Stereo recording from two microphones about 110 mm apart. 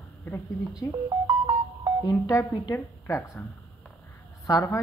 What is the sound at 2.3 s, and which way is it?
A woman's voice, 25° left (ahead or behind).